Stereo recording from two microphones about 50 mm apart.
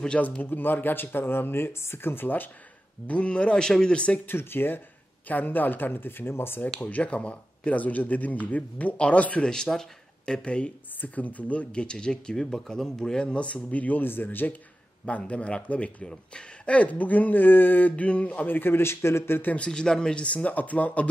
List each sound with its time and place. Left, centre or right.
0.4 s speech: left
3.1 s speech: left
4.3 s speech: left
6.8 s speech: left
9.5 s speech: centre
11.0 s speech: left
14.0 s speech: left
15.0 s speech: left
18.5 s speech: left
19.4 s speech: left
19.7 s speech: centre